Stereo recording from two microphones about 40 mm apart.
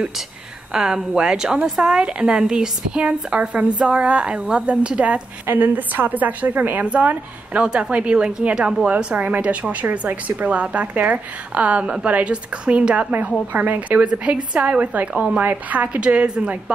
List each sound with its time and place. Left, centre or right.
0.7 s a woman's voice: centre; by 5.2 s right
5.5 s a woman's voice: right
6.9 s a woman's voice: right
7.6 s a woman's voice: right
8.8 s a woman's voice: right
9.8 s a woman's voice: right
16.0 s a woman's voice: right